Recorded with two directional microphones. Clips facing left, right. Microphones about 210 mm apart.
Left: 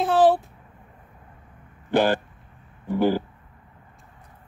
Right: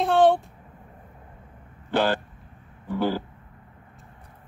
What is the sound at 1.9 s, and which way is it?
Speech, 15° left (ahead or behind).